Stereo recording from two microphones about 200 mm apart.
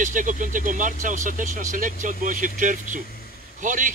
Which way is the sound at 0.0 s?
40° right (ahead or behind).